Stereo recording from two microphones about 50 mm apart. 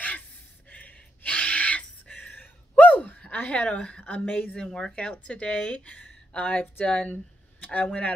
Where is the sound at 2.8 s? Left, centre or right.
Left.